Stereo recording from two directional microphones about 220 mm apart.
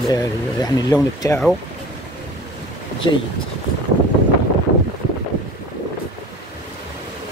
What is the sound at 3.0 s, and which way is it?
Speech, 20° left (ahead or behind).